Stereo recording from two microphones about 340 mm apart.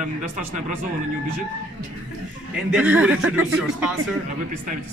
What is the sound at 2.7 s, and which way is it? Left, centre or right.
Speech, centre.